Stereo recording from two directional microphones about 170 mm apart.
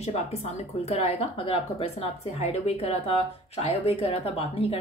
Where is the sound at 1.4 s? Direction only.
35° left (ahead or behind).